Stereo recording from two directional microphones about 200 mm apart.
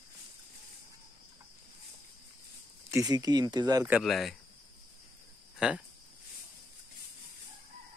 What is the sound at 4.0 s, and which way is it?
Speech, centre (ahead or behind).